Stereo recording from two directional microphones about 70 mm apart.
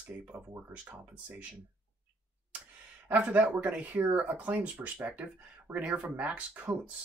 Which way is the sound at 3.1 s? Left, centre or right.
Right.